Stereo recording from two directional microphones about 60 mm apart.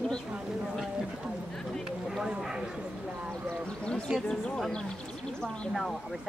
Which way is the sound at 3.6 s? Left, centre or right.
Centre.